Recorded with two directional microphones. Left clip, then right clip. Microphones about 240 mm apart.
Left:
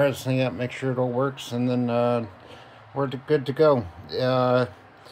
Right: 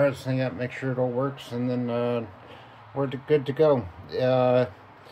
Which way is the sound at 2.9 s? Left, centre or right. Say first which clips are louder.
Even; centre.